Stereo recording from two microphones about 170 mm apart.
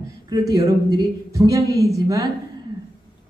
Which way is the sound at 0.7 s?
20° right (ahead or behind).